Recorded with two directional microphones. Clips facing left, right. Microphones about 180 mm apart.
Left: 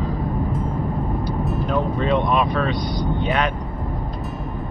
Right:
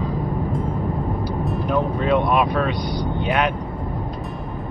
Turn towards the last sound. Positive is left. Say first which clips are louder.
# even
turn(degrees=0)  # may be behind; listen again after turning